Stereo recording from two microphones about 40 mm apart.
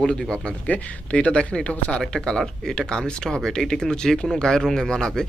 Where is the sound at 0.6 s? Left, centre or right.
Left.